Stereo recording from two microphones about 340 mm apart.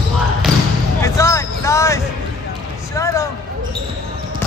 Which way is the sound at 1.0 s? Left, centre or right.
Centre.